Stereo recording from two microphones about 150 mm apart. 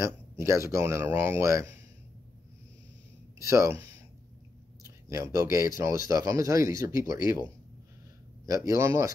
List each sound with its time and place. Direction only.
0.0 s speech: 20° right (ahead or behind)
3.4 s speech: 20° right (ahead or behind)
8.5 s speech: 20° right (ahead or behind)